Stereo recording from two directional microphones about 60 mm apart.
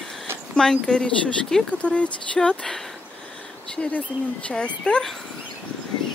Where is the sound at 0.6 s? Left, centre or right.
Centre.